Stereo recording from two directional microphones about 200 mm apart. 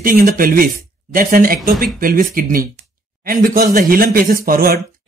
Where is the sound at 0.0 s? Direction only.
45° right (ahead or behind).